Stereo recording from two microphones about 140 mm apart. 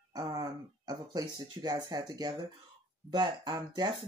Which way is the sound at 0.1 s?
25° right (ahead or behind).